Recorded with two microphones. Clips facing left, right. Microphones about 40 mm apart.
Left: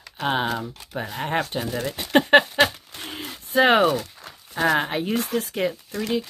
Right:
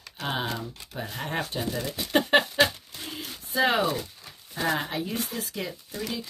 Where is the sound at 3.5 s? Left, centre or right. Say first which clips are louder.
Left 7 dB; left.